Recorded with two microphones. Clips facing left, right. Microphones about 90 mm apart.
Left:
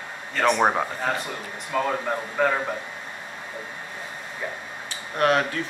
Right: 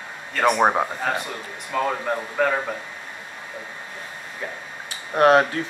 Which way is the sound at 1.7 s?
5° left (ahead or behind).